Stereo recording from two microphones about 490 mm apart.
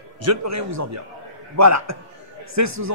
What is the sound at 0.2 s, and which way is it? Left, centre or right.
A man's voice, right.